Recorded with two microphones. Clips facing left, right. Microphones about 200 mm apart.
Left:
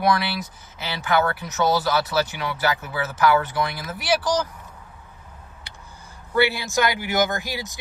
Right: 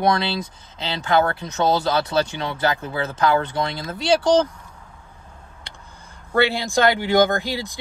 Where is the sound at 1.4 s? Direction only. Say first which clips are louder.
Right 1 dB; 25° right (ahead or behind).